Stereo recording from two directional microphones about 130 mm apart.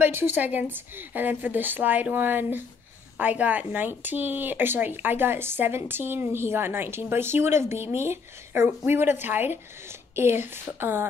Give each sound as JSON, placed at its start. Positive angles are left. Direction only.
{"t": 0.0, "sound": "speech", "side_deg": -15}